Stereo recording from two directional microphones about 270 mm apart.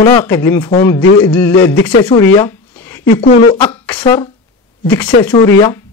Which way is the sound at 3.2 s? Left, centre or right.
Left.